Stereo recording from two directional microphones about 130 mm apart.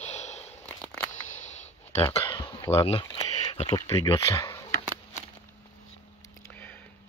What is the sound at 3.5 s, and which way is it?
Speech, 50° left (ahead or behind).